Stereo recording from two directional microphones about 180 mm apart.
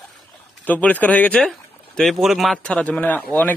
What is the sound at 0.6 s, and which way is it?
Speech, 10° left (ahead or behind).